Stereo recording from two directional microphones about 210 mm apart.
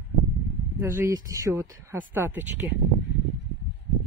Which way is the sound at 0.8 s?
15° right (ahead or behind).